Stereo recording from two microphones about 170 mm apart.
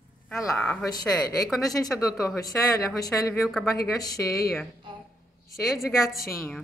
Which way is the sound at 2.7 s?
20° left (ahead or behind).